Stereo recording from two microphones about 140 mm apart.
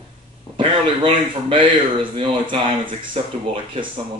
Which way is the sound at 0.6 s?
40° right (ahead or behind).